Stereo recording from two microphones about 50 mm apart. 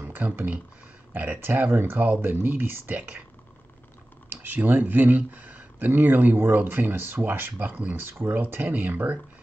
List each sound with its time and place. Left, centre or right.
0.0 s a sound: right
1.1 s speech: right
4.3 s speech: right
7.6 s speech: right
7.9 s speech: right